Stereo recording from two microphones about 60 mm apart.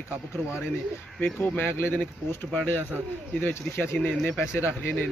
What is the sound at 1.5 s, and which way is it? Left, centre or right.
A man's voice, left.